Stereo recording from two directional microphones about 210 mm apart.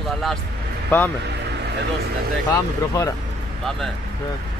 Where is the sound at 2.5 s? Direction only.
15° left (ahead or behind).